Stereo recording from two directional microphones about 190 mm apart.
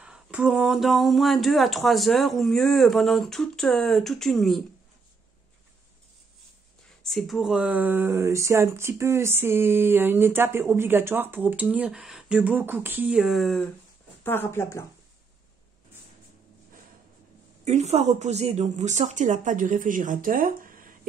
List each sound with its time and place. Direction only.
0.0 s speech: 5° right (ahead or behind)
7.0 s speech: centre (ahead or behind)
14.2 s speech: 10° left (ahead or behind)
17.6 s speech: 35° right (ahead or behind)